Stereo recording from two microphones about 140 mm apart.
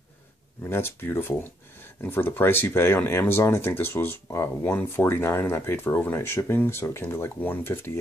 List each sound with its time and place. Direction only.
0.7 s speech: 15° left (ahead or behind)